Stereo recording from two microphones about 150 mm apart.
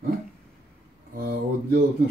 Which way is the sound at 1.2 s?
85° right.